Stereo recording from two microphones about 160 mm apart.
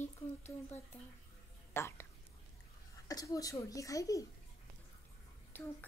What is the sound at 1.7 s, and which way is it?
Speech, 15° left (ahead or behind).